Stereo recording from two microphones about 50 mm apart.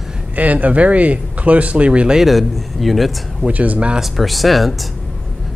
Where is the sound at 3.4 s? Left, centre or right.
Right.